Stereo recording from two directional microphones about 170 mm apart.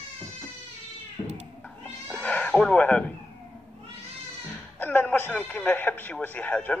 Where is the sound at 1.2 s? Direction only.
35° left (ahead or behind).